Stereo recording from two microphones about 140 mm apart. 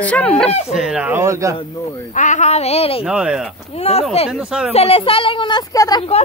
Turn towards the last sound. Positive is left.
turn(degrees=30)  # may be behind; listen again after turning